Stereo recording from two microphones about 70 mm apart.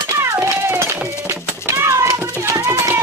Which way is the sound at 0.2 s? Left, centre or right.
Right.